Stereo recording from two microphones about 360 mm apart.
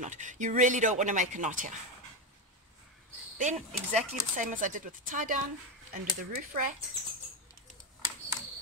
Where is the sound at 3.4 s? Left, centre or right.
Centre.